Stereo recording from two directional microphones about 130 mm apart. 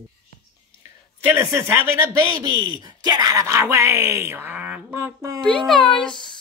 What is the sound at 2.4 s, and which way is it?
Speech, 30° right (ahead or behind).